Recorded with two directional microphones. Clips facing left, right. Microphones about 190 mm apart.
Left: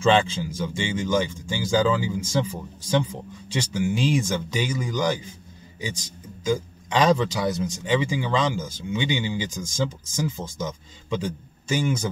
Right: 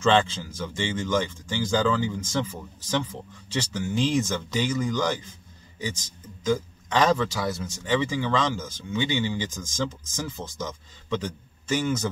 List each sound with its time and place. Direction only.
0.0 s a man's voice: 10° left (ahead or behind)
6.4 s a man's voice: 15° left (ahead or behind)